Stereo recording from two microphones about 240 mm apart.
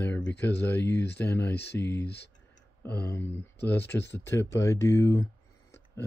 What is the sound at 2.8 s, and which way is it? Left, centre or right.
Speech, centre.